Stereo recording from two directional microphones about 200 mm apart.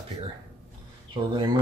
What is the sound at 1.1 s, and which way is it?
Speech, 25° right (ahead or behind).